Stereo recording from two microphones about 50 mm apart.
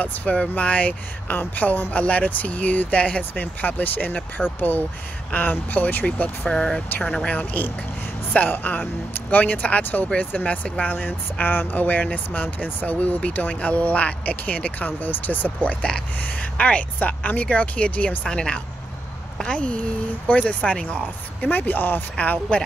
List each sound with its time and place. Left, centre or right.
0.0 s speech: left
6.4 s speech: centre
7.3 s speech: left
18.2 s speech: centre
21.4 s speech: left
22.1 s speech: left